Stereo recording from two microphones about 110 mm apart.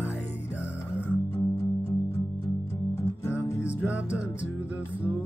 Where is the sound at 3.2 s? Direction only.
25° left (ahead or behind).